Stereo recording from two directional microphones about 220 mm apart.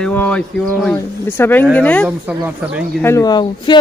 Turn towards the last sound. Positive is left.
turn(degrees=20)  # may be behind; listen again after turning